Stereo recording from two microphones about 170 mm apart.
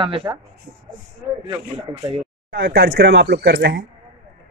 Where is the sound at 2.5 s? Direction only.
80° right.